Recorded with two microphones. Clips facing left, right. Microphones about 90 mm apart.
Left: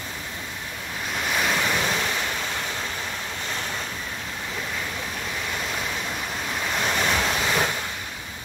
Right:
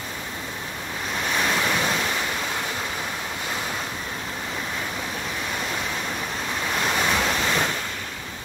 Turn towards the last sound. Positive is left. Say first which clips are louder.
# even
turn(degrees=0)  # may be behind; listen again after turning